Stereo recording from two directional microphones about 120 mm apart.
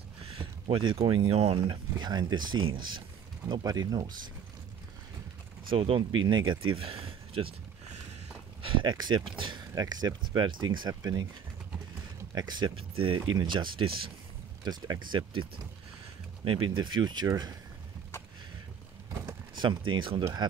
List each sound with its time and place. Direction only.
0.2 s speech: 40° right (ahead or behind)
1.7 s speech: 35° right (ahead or behind)
5.7 s speech: 45° right (ahead or behind)
8.6 s speech: 40° right (ahead or behind)
12.4 s speech: 40° right (ahead or behind)
14.6 s speech: 35° right (ahead or behind)
16.4 s speech: 40° right (ahead or behind)
19.2 s speech: 35° right (ahead or behind)